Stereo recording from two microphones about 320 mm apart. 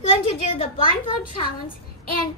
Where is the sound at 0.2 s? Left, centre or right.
Centre.